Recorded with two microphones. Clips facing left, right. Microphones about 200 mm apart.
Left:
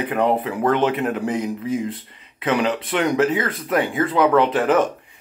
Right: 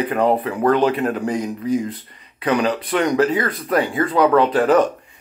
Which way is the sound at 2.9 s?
20° left (ahead or behind).